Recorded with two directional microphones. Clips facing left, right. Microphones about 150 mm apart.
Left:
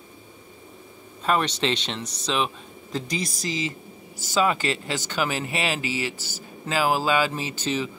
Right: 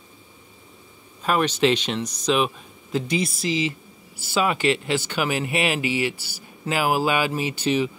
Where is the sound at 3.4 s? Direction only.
40° left (ahead or behind).